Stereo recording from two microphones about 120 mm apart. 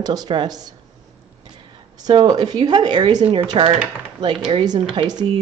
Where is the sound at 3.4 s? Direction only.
45° right (ahead or behind).